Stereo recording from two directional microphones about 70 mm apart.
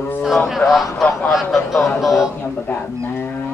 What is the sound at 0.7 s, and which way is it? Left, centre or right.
Speech, centre.